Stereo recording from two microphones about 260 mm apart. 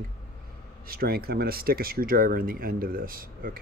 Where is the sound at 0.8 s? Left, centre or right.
Right.